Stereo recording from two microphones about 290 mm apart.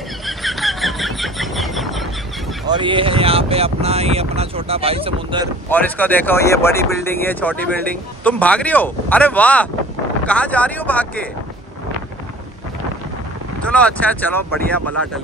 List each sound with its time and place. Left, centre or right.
0.3 s a sound: centre
2.6 s speech: centre
5.7 s speech: centre
13.7 s speech: centre